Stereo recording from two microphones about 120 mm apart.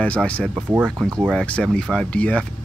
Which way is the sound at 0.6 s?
10° right (ahead or behind).